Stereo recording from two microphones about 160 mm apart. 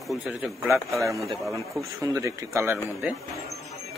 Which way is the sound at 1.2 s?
Centre (ahead or behind).